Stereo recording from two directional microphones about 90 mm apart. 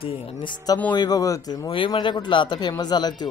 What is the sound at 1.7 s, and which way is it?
A man's voice, 65° left (ahead or behind).